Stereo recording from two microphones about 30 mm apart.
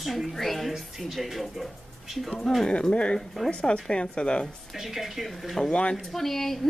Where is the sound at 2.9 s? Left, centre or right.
Left.